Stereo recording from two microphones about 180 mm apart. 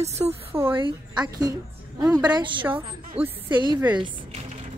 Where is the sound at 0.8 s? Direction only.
25° right (ahead or behind).